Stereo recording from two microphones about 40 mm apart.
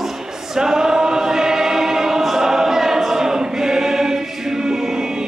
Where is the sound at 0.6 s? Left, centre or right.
Centre.